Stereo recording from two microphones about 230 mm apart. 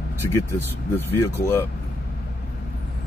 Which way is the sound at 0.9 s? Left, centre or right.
Centre.